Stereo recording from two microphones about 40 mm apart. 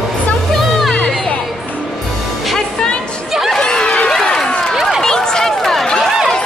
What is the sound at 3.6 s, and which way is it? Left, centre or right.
Chatter, centre.